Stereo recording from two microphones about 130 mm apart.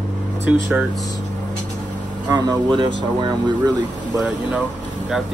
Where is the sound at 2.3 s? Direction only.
35° right (ahead or behind).